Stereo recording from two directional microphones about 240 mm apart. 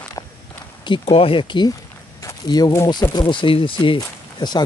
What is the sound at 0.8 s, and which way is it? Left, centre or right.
Speech, left.